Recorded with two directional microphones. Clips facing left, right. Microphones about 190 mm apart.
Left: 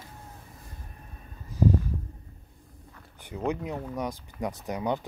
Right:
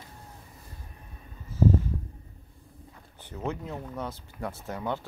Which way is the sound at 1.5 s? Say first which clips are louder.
Right 1 dB; 15° left (ahead or behind).